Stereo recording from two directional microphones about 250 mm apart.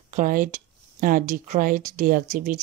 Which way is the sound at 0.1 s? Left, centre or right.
Right.